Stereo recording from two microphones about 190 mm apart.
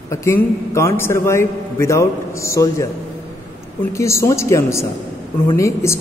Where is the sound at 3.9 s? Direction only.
15° left (ahead or behind).